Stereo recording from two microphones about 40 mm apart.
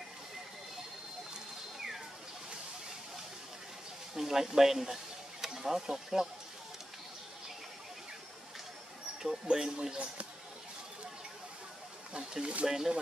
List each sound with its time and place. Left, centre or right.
4.1 s speech: centre
9.2 s speech: centre
12.1 s speech: centre